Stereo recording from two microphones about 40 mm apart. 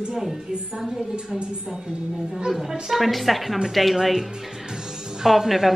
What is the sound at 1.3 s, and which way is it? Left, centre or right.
Speech, right.